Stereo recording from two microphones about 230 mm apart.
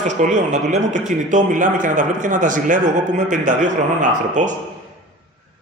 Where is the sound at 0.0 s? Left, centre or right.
Right.